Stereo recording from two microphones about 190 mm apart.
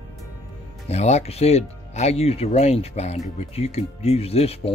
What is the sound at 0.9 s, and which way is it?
Speech, 35° left (ahead or behind).